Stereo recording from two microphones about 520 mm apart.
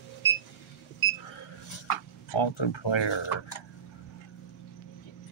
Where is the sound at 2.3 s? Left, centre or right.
Left.